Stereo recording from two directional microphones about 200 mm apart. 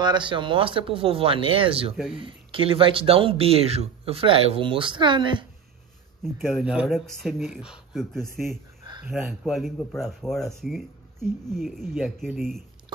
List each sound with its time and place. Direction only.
0.0 s speech: 25° right (ahead or behind)
6.3 s speech: centre (ahead or behind)
8.4 s speech: 10° right (ahead or behind)
11.9 s speech: centre (ahead or behind)